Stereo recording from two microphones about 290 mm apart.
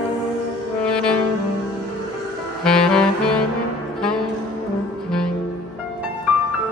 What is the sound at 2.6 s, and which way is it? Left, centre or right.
Saxophone, centre.